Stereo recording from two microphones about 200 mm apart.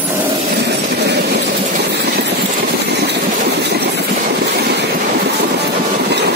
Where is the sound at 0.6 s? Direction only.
55° right (ahead or behind).